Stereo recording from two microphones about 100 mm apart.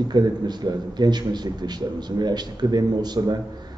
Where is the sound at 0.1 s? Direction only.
45° right (ahead or behind).